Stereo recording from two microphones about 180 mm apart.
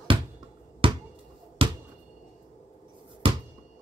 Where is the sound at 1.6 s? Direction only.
30° right (ahead or behind).